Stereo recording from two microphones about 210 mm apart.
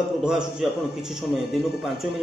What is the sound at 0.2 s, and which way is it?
A man's voice, centre (ahead or behind).